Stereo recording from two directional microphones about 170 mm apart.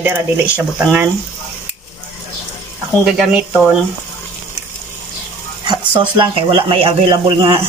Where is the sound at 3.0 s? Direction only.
5° right (ahead or behind).